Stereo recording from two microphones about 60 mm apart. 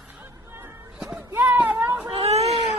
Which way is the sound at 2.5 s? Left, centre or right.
Centre.